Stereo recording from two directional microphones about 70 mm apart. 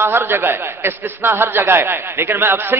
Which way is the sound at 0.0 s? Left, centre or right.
Right.